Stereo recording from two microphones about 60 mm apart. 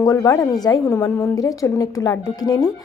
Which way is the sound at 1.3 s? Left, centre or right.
Left.